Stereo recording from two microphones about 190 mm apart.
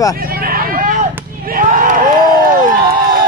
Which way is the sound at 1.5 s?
45° right (ahead or behind).